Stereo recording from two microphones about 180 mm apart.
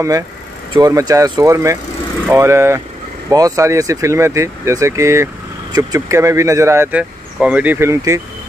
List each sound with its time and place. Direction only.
0.7 s speech: 20° right (ahead or behind)